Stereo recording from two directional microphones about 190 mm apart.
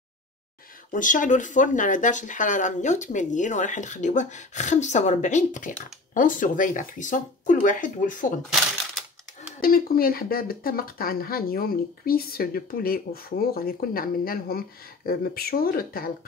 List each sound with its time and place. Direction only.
0.9 s speech: 45° left (ahead or behind)
9.6 s speech: 50° left (ahead or behind)